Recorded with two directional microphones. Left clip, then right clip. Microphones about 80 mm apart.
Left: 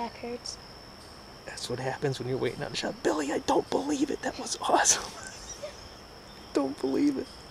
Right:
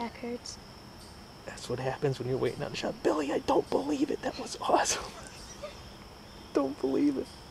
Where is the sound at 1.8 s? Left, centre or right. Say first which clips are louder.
Even; centre.